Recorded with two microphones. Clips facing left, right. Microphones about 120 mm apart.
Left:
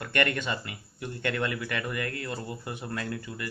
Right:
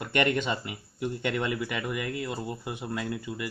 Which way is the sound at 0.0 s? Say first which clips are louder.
Right 2 dB; 20° right (ahead or behind).